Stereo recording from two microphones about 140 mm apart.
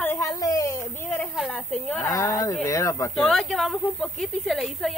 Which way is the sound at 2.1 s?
20° left (ahead or behind).